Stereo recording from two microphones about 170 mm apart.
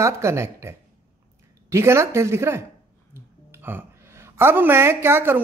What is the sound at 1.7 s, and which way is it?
A woman's voice, 15° right (ahead or behind).